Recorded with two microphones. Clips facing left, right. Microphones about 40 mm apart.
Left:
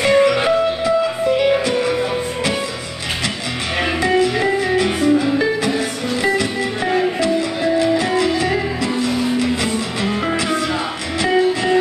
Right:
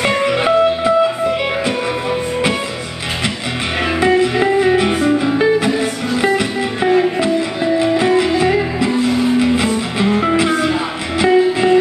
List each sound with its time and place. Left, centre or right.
0.0 s music: centre
4.0 s music: centre